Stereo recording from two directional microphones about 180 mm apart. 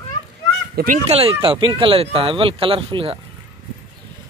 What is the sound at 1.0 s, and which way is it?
Speech, 30° right (ahead or behind).